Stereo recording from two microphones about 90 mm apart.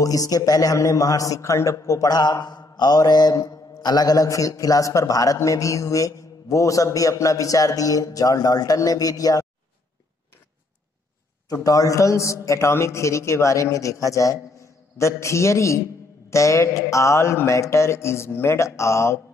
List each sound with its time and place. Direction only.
0.0 s mantra: 40° left (ahead or behind)
2.0 s a man's voice: 45° left (ahead or behind)
2.4 s mantra: 50° left (ahead or behind)
11.4 s mantra: 40° left (ahead or behind)